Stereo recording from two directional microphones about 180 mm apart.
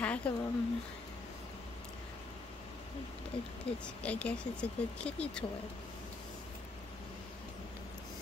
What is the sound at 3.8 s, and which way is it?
Speech, 5° left (ahead or behind).